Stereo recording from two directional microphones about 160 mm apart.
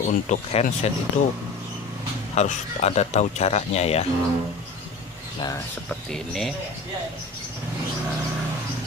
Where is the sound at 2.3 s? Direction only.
45° left (ahead or behind).